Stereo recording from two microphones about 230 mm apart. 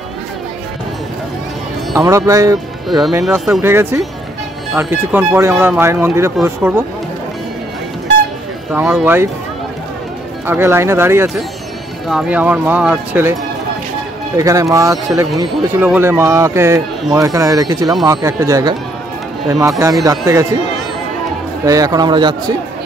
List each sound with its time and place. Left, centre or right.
2.0 s speech: centre
8.7 s speech: centre
10.4 s speech: centre
19.8 s speech: centre
21.6 s speech: centre